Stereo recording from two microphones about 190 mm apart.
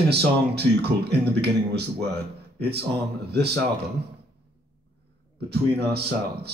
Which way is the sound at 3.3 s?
60° right (ahead or behind).